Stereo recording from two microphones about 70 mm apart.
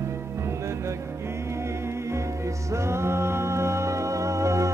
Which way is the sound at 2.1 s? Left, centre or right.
Right.